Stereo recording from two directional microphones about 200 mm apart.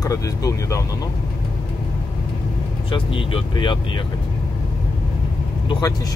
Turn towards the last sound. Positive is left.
turn(degrees=20)  # may be behind; listen again after turning